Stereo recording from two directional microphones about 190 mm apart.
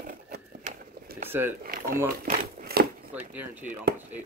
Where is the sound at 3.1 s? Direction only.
10° right (ahead or behind).